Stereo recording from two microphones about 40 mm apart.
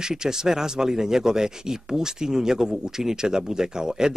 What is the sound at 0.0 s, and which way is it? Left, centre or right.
Speech, centre.